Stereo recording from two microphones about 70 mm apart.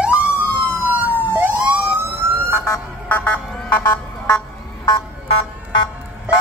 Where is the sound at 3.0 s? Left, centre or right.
Left.